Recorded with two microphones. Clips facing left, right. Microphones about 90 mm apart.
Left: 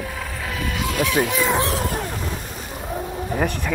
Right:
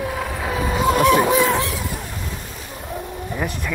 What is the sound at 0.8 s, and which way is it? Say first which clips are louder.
Speech: right 6 dB; 40° right (ahead or behind).